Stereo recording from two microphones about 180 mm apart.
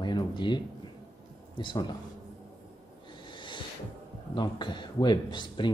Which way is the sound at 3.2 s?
25° left (ahead or behind).